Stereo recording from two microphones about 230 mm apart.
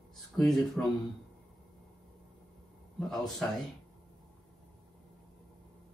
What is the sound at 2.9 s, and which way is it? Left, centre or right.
Speech, centre.